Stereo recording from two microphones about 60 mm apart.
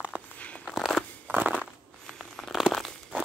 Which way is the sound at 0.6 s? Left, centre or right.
Centre.